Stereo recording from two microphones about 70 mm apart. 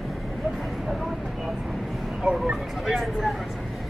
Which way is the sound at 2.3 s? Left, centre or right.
Centre.